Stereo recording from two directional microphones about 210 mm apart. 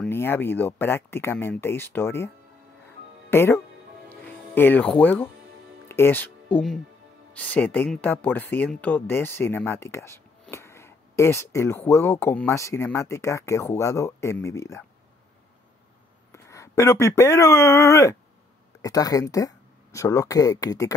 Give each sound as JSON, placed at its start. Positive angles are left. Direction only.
{"t": 0.0, "sound": "speech", "side_deg": 10}
{"t": 4.1, "sound": "music", "side_deg": 10}
{"t": 5.9, "sound": "speech", "side_deg": 10}
{"t": 16.3, "sound": "speech", "side_deg": 15}